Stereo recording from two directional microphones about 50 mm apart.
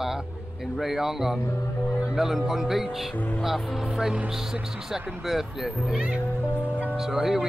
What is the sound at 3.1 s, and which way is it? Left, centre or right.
Speech, left.